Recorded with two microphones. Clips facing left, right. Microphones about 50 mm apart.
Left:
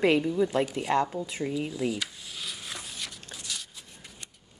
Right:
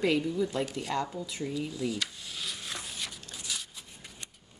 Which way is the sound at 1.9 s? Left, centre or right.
Centre.